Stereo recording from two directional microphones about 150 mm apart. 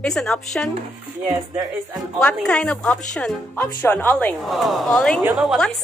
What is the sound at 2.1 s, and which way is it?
Speech, 5° left (ahead or behind).